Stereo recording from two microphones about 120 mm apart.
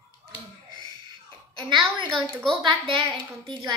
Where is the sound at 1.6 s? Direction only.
40° right (ahead or behind).